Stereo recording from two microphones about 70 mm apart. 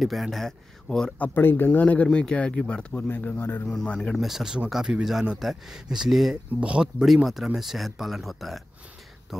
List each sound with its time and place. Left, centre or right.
0.0 s speech: centre
1.2 s a man's voice: left
3.0 s a man's voice: left
3.6 s speech: centre
4.2 s speech: centre